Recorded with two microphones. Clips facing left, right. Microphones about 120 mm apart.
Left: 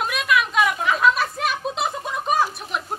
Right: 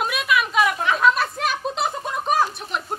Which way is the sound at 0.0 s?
Centre (ahead or behind).